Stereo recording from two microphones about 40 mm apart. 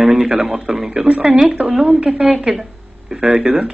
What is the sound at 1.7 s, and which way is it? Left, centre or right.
A man's voice, centre.